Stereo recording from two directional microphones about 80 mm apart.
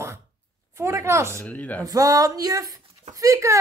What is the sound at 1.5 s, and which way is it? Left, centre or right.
Speech, centre.